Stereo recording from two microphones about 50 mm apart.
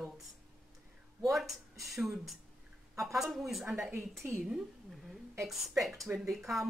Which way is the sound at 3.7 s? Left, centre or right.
Right.